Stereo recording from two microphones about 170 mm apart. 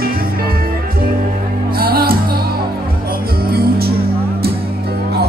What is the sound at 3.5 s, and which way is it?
Music, 65° right (ahead or behind).